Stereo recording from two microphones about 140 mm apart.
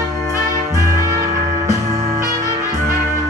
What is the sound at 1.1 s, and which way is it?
Music, 25° right (ahead or behind).